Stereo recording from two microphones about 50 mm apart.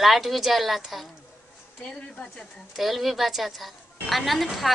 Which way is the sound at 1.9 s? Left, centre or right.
Left.